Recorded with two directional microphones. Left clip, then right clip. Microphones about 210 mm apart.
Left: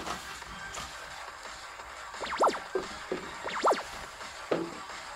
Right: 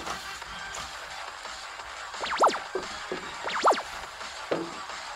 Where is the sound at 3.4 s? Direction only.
15° right (ahead or behind).